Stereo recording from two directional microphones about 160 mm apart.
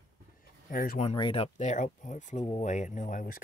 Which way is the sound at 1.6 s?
50° left (ahead or behind).